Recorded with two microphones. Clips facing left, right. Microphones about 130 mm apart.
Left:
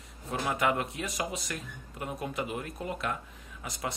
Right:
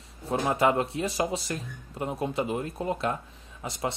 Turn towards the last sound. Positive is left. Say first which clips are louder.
# right 5 dB
turn(degrees=-25)  # may be behind; listen again after turning